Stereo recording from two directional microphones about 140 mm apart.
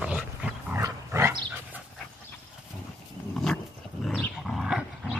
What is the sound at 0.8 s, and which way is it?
Dog, 20° right (ahead or behind).